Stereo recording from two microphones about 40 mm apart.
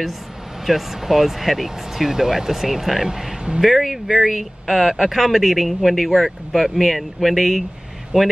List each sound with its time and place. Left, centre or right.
0.7 s speech: centre
8.1 s speech: centre